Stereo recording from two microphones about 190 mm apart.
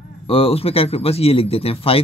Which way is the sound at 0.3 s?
30° left (ahead or behind).